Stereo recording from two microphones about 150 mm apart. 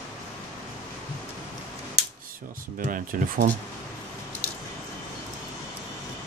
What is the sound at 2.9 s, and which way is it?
Speech, 65° right (ahead or behind).